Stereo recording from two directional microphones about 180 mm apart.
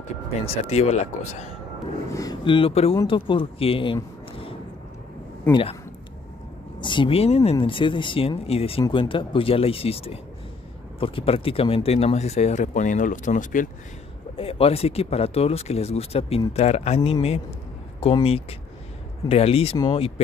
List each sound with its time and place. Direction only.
0.4 s speech: 35° left (ahead or behind)
2.1 s speech: 25° left (ahead or behind)
6.8 s speech: 25° left (ahead or behind); by 13.7 s 45° left (ahead or behind)
14.3 s speech: 30° left (ahead or behind)